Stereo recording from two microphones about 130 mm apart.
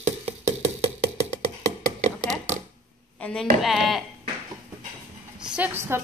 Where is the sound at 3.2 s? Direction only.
10° left (ahead or behind).